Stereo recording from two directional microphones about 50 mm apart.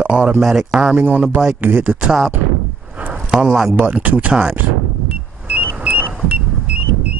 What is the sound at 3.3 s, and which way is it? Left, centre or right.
Speech, centre.